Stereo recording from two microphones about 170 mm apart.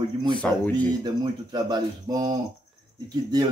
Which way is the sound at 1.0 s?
25° right (ahead or behind).